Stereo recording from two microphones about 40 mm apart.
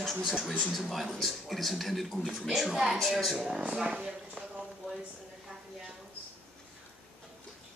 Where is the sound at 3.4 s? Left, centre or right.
Right.